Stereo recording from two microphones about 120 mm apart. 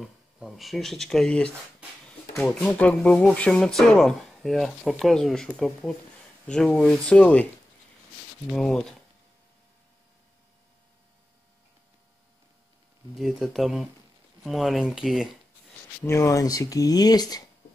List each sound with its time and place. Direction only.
0.0 s speech: 5° right (ahead or behind)
8.5 s speech: 5° left (ahead or behind)
13.1 s speech: centre (ahead or behind)
16.0 s speech: 25° left (ahead or behind)